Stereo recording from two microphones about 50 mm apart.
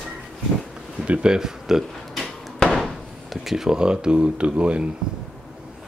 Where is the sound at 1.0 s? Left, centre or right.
Right.